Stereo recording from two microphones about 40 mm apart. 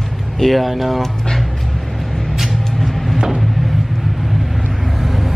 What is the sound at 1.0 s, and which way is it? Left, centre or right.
Music, centre.